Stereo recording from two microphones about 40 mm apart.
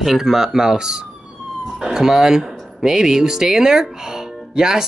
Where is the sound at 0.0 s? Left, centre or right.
Centre.